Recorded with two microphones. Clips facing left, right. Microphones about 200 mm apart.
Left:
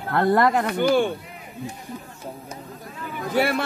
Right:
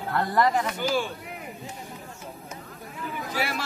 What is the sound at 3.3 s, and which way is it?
Speech, 60° left (ahead or behind).